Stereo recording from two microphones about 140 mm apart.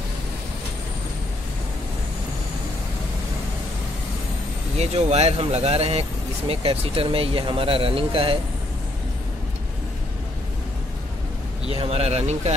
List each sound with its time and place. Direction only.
4.7 s speech: 50° right (ahead or behind)
11.6 s speech: 45° right (ahead or behind)